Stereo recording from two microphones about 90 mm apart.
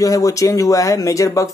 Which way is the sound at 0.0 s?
40° left (ahead or behind).